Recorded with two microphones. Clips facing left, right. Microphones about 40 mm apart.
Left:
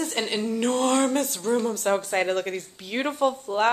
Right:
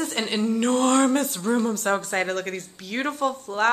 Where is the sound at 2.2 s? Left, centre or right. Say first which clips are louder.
Left 2 dB; centre.